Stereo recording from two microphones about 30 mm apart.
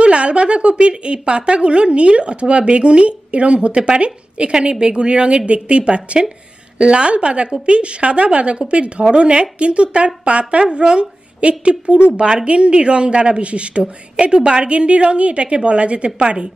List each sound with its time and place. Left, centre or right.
0.0 s speech: right